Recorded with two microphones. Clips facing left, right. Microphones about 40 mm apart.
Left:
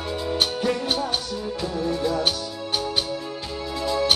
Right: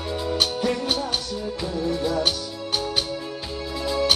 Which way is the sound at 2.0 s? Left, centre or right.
Centre.